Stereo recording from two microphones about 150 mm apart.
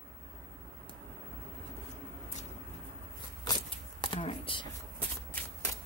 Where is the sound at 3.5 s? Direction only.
25° left (ahead or behind).